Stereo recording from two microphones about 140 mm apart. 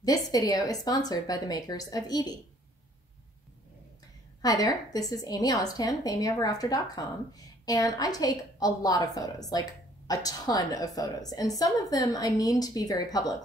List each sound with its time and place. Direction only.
0.0 s a woman's voice: 25° left (ahead or behind)
4.4 s a woman's voice: 25° left (ahead or behind)